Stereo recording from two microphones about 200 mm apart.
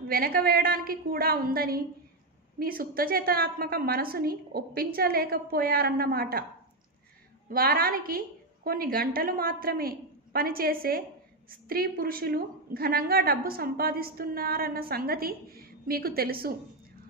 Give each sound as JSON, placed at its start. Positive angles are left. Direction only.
{"t": 0.1, "sound": "a woman's voice", "side_deg": -50}
{"t": 7.4, "sound": "a woman's voice", "side_deg": -45}